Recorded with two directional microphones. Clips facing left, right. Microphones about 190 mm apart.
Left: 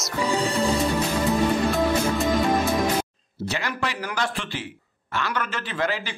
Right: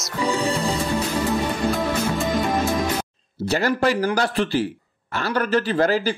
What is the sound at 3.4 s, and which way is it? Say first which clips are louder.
Speech: right 9 dB; 40° right (ahead or behind).